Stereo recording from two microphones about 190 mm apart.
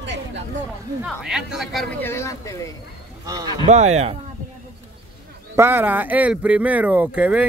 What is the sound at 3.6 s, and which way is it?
Speech, 35° right (ahead or behind).